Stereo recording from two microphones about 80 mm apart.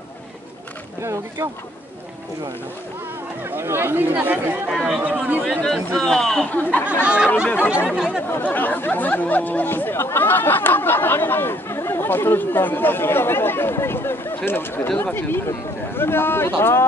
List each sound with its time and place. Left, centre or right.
1.0 s speech: right
3.4 s speech: right
4.6 s speech: centre
5.0 s speech: centre
5.6 s a man's voice: centre
6.5 s speech: left
6.9 s speech: centre
8.3 s speech: left